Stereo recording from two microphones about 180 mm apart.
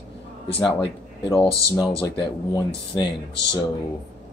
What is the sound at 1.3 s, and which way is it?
Speech, 30° left (ahead or behind).